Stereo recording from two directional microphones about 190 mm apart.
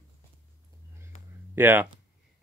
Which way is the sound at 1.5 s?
10° right (ahead or behind).